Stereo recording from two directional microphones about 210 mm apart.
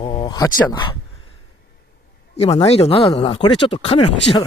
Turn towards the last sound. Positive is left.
turn(degrees=30)  # may be behind; listen again after turning